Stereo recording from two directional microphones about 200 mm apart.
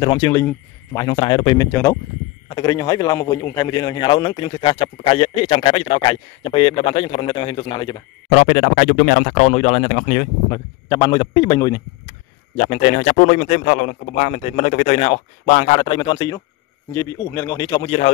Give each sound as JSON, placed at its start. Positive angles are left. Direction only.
{"t": 0.0, "sound": "a man's voice", "side_deg": 20}
{"t": 1.7, "sound": "a man's voice", "side_deg": 10}
{"t": 8.3, "sound": "speech", "side_deg": 35}
{"t": 10.5, "sound": "a man's voice", "side_deg": 20}
{"t": 12.5, "sound": "speech", "side_deg": 35}